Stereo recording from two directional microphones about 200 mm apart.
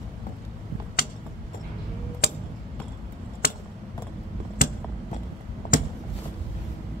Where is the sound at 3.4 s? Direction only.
50° left (ahead or behind).